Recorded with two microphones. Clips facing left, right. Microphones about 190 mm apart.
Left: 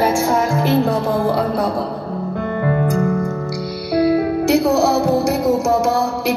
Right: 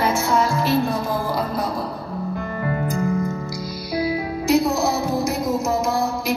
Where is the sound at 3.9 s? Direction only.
65° left (ahead or behind).